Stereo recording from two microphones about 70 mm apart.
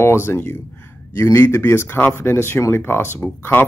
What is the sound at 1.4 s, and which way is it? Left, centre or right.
Speech, left.